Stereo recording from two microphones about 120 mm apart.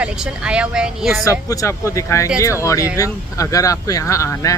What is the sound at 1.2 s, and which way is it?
Speech, 30° left (ahead or behind).